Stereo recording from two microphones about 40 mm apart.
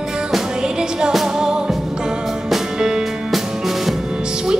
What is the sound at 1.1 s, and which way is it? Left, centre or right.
Music, centre.